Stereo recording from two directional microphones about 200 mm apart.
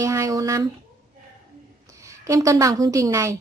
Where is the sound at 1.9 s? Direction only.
15° right (ahead or behind).